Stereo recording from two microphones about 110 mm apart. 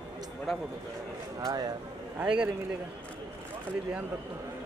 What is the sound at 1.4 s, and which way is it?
Speech, 35° right (ahead or behind).